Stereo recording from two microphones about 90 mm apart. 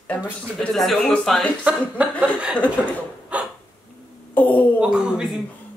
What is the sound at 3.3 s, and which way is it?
Hiccup, 15° right (ahead or behind).